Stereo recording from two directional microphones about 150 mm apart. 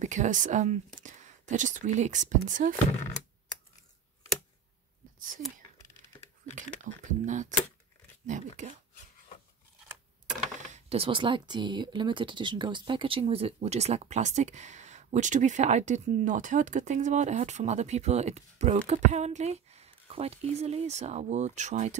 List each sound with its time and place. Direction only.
0.0 s speech: 55° right (ahead or behind)
6.5 s speech: 55° right (ahead or behind)
10.7 s speech: 40° right (ahead or behind)